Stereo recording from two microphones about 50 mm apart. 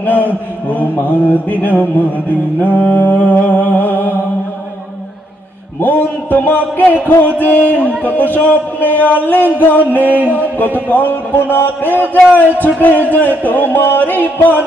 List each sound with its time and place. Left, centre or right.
0.0 s mantra: left
1.0 s speech: left
2.8 s music: left
5.8 s speech: left